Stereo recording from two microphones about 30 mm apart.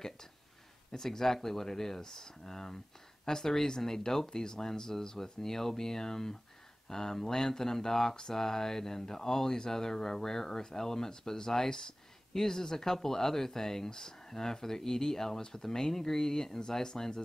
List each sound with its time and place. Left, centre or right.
0.9 s speech: centre